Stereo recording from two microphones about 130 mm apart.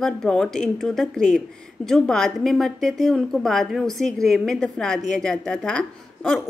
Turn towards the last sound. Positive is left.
turn(degrees=5)  # may be behind; listen again after turning